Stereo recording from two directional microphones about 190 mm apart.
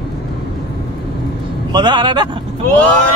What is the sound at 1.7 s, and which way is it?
Speech, 25° right (ahead or behind).